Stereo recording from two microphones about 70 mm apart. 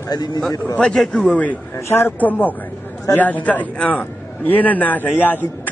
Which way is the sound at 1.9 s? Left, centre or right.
Left.